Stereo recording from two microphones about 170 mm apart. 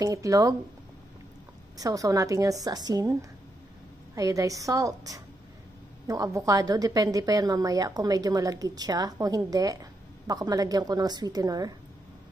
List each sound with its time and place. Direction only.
0.0 s a woman's voice: 20° right (ahead or behind)
1.8 s a woman's voice: 20° right (ahead or behind)